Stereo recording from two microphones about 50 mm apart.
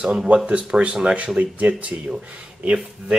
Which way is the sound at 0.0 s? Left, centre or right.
Centre.